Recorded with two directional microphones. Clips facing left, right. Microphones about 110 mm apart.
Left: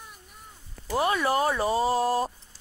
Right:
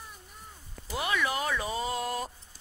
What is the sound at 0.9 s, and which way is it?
Speech, 40° left (ahead or behind).